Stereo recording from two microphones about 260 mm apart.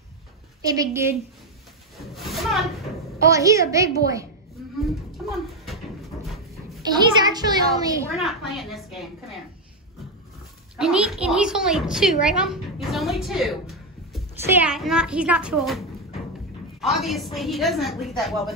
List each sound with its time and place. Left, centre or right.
0.7 s a woman's voice: centre
2.0 s a sound: centre
3.3 s a woman's voice: centre
6.9 s a woman's voice: centre
8.2 s a woman's voice: centre
10.8 s a woman's voice: centre
16.8 s a woman's voice: centre